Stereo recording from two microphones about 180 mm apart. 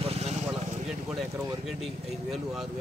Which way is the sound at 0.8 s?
5° right (ahead or behind).